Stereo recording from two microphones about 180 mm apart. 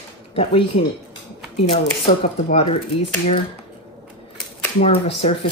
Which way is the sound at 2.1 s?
50° left (ahead or behind).